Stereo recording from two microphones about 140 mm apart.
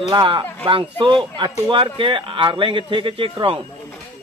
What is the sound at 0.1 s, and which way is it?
Speech, 30° right (ahead or behind).